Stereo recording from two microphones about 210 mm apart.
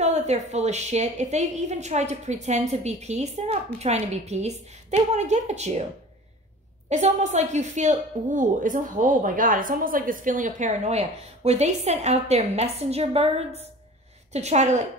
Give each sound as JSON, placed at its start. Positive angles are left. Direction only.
{"t": 0.0, "sound": "a woman's voice", "side_deg": -30}
{"t": 6.9, "sound": "a woman's voice", "side_deg": -35}